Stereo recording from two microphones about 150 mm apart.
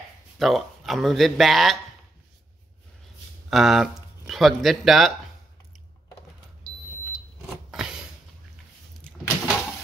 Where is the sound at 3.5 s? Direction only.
Centre (ahead or behind).